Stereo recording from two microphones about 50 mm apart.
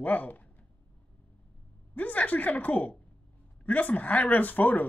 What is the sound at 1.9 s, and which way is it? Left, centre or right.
Speech, left.